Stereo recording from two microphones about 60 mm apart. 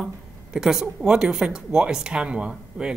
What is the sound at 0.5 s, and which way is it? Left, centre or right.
A woman's voice, centre.